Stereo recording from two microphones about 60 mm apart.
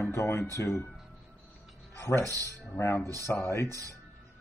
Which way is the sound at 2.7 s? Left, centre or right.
Left.